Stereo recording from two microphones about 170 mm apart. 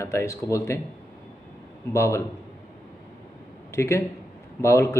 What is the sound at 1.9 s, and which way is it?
Speech, 15° left (ahead or behind).